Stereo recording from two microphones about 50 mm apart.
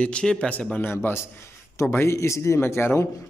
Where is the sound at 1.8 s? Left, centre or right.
Left.